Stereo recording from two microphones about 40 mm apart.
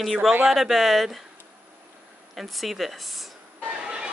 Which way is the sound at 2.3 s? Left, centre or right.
Centre.